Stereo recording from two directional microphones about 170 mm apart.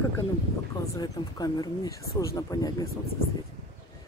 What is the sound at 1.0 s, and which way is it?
Speech, 25° left (ahead or behind).